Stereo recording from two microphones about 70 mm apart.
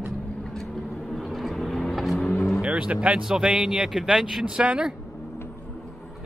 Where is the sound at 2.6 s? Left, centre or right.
Centre.